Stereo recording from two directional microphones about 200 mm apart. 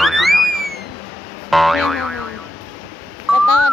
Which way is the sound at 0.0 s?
Centre (ahead or behind).